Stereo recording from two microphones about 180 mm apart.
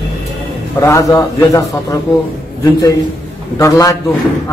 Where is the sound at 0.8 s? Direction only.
20° left (ahead or behind).